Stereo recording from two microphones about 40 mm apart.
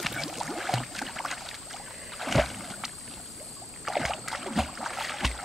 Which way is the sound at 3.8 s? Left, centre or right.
Centre.